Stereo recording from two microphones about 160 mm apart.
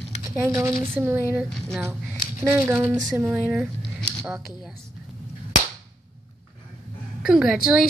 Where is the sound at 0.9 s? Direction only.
15° right (ahead or behind).